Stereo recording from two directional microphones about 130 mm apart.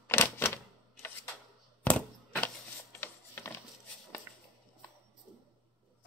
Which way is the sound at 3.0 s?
15° left (ahead or behind).